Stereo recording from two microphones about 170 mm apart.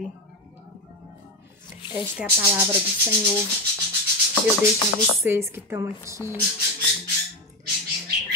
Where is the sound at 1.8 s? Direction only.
30° left (ahead or behind).